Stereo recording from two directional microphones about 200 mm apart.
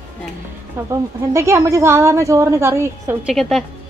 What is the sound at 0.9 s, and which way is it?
A woman's voice, 15° right (ahead or behind).